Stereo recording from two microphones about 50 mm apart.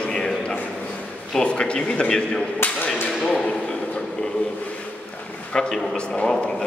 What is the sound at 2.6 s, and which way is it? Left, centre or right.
Speech, left.